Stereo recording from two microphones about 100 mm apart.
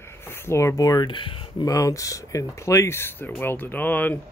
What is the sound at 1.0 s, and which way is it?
Speech, 55° left (ahead or behind).